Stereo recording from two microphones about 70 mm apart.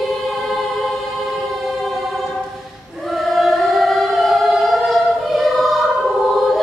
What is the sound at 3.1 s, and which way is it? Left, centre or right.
Choir, centre.